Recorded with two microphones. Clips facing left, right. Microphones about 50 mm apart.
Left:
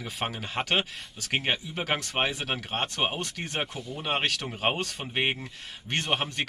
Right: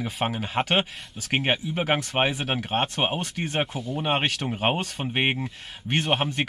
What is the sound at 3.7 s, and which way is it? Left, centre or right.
Speech, centre.